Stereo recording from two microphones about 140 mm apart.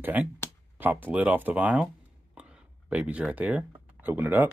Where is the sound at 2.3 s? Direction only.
5° right (ahead or behind).